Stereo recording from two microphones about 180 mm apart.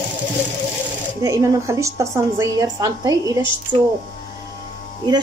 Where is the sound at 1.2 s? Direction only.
15° right (ahead or behind).